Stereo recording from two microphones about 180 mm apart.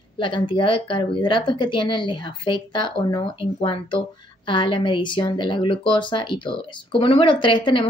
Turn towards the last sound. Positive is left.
turn(degrees=30)  # may be behind; listen again after turning